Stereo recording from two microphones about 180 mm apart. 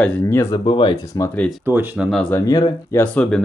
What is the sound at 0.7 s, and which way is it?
Speech, 30° left (ahead or behind).